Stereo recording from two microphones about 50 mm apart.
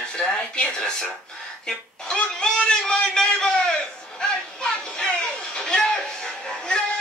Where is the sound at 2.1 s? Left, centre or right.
Centre.